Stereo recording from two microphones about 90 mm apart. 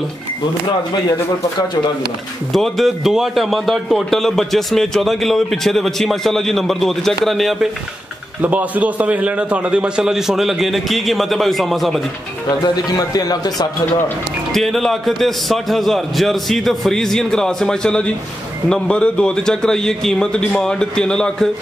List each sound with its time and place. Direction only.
2.5 s a man's voice: centre (ahead or behind)
8.4 s a man's voice: 15° right (ahead or behind); by 12.0 s centre (ahead or behind)
12.4 s a man's voice: 50° left (ahead or behind)
14.5 s a man's voice: centre (ahead or behind)